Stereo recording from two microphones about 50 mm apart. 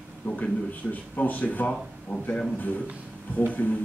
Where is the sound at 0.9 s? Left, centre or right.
Left.